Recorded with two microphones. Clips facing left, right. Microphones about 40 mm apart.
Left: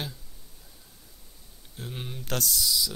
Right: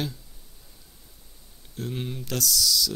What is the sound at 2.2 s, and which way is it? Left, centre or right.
Speech, left.